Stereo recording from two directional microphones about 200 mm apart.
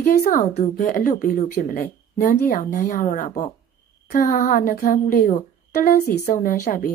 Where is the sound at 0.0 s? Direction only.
45° left (ahead or behind).